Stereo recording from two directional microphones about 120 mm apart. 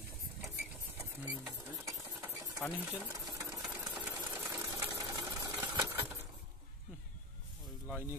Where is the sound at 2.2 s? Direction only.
25° right (ahead or behind).